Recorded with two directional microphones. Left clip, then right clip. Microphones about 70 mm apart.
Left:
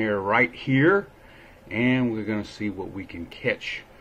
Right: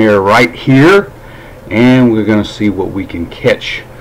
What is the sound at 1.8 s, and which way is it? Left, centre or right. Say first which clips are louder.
Speech: right 15 dB; centre.